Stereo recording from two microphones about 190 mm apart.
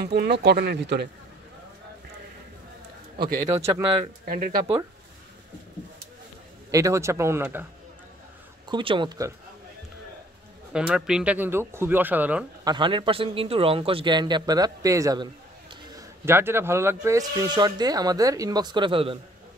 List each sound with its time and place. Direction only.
0.0 s speech: 60° right (ahead or behind)
3.2 s a man's voice: 50° right (ahead or behind)
6.7 s a man's voice: 15° right (ahead or behind)
8.6 s speech: 25° right (ahead or behind)
10.7 s a man's voice: 5° right (ahead or behind)
12.6 s speech: 25° right (ahead or behind)